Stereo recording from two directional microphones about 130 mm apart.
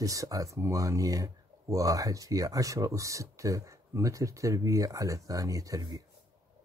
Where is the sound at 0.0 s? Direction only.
25° right (ahead or behind).